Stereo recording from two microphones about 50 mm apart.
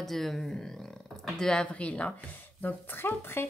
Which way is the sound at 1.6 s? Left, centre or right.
Left.